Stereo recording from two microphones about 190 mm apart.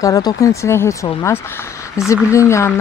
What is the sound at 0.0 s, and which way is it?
Speech, 20° left (ahead or behind).